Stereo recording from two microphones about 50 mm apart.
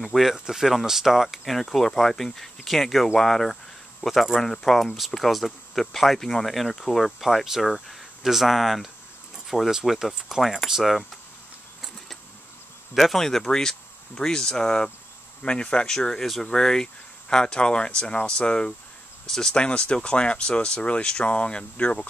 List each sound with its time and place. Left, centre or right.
0.0 s speech: centre
7.1 s speech: centre
12.9 s speech: centre
19.2 s speech: centre
19.5 s speech: left